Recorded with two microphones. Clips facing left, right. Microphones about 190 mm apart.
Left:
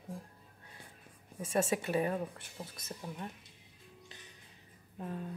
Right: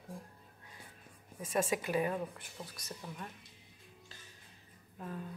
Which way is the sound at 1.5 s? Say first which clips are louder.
Left 1 dB; 25° left (ahead or behind).